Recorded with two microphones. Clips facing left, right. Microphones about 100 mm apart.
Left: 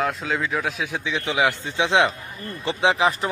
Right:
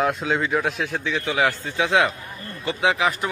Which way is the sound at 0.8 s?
15° left (ahead or behind).